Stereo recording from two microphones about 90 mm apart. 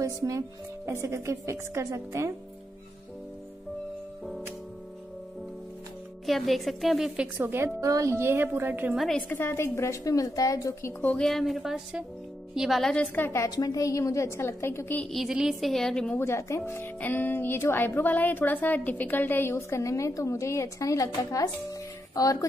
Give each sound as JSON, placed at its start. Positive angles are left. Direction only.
{"t": 0.0, "sound": "speech", "side_deg": -35}
{"t": 6.2, "sound": "a woman's voice", "side_deg": 0}
{"t": 7.3, "sound": "a woman's voice", "side_deg": -25}
{"t": 8.9, "sound": "a woman's voice", "side_deg": 0}
{"t": 9.3, "sound": "a woman's voice", "side_deg": 25}
{"t": 11.1, "sound": "a woman's voice", "side_deg": 5}
{"t": 12.9, "sound": "speech", "side_deg": 15}
{"t": 13.6, "sound": "a woman's voice", "side_deg": 40}
{"t": 15.0, "sound": "a woman's voice", "side_deg": 0}
{"t": 16.2, "sound": "speech", "side_deg": 30}
{"t": 19.5, "sound": "a woman's voice", "side_deg": 35}